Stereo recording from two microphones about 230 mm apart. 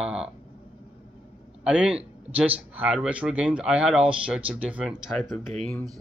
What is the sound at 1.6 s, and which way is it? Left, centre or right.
Speech, centre.